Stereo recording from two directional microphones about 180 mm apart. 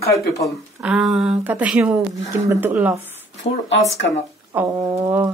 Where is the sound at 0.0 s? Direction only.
15° left (ahead or behind).